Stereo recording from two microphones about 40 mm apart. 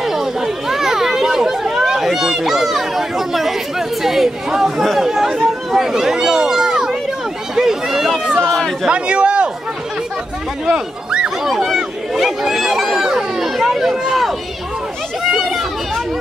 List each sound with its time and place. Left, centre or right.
0.0 s chatter: centre
4.0 s speech: centre
8.8 s a man's voice: right
10.7 s speech: centre
11.4 s speech: centre
15.3 s chatter: centre